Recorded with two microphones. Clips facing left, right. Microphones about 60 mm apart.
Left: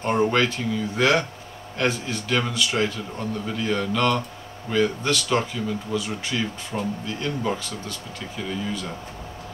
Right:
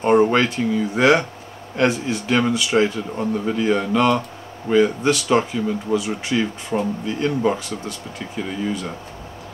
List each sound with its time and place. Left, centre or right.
0.0 s speech: centre